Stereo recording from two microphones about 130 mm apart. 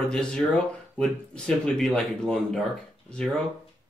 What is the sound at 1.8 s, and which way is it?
Speech, 5° left (ahead or behind).